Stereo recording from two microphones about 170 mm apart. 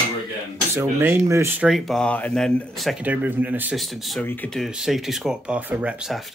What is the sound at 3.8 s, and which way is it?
Speech, centre (ahead or behind).